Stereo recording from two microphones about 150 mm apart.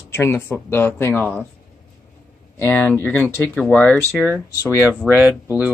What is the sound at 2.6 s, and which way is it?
Speech, 15° left (ahead or behind).